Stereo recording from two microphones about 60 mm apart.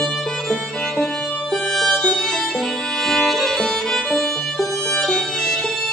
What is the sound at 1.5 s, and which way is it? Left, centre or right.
Music, centre.